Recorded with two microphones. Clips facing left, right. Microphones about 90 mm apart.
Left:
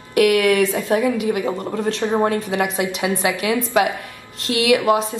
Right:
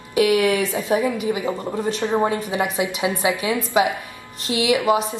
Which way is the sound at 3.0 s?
15° right (ahead or behind).